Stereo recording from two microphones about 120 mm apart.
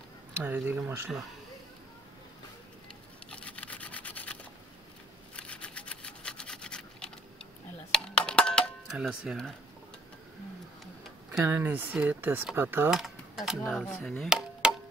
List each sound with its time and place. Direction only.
0.4 s speech: 15° right (ahead or behind)
3.3 s a sound: 10° left (ahead or behind)
5.3 s rub: 10° left (ahead or behind)
7.9 s a sound: 5° left (ahead or behind)
9.0 s speech: centre (ahead or behind)
11.4 s speech: 15° right (ahead or behind)
12.9 s speech: 5° right (ahead or behind)
13.7 s chop: centre (ahead or behind)